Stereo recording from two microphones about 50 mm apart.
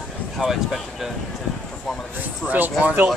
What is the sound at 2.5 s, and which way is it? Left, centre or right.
Speech, right.